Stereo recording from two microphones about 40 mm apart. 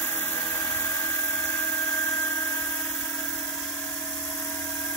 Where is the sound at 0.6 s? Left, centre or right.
Left.